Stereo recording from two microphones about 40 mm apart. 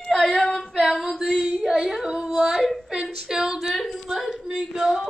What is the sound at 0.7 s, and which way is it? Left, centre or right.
Female singing, centre.